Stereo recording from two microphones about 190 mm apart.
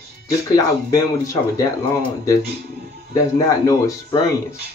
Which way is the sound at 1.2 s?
15° left (ahead or behind).